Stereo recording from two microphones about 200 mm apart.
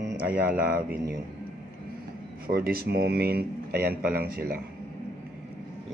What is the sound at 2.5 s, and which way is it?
Speech, 50° right (ahead or behind).